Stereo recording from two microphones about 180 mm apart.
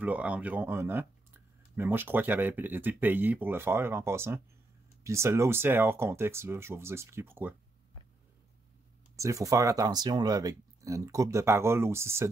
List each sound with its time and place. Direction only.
0.0 s speech: 10° right (ahead or behind)
9.1 s speech: 15° right (ahead or behind)